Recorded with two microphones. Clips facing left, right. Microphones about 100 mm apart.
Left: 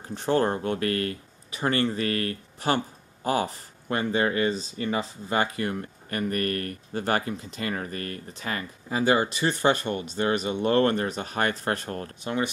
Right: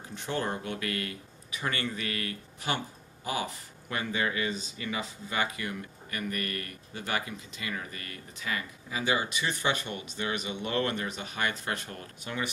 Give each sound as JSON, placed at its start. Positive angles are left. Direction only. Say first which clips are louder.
{"t": 0.1, "sound": "speech", "louder": "left 9 dB", "side_deg": 40}